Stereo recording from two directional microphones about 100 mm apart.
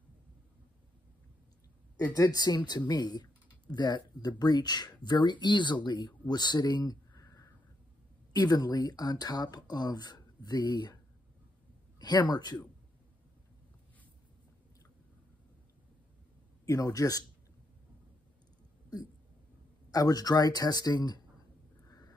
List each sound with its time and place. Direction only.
2.1 s speech: 40° left (ahead or behind)
12.0 s speech: 45° left (ahead or behind)
16.6 s speech: 35° left (ahead or behind)
19.9 s speech: 40° left (ahead or behind)